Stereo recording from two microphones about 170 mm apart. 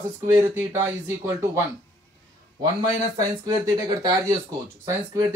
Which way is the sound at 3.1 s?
20° right (ahead or behind).